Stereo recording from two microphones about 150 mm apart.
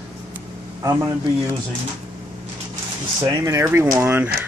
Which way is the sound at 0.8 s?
20° right (ahead or behind).